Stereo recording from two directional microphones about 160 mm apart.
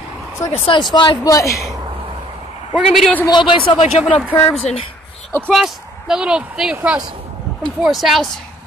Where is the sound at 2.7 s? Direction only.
Centre (ahead or behind).